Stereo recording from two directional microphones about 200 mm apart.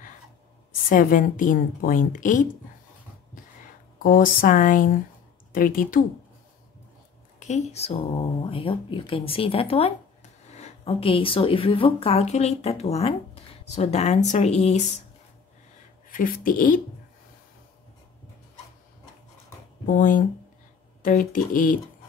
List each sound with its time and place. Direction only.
0.8 s speech: 45° left (ahead or behind)
4.0 s speech: 45° left (ahead or behind)
7.3 s speech: 35° left (ahead or behind)
16.1 s speech: 45° left (ahead or behind)
20.0 s speech: 40° left (ahead or behind)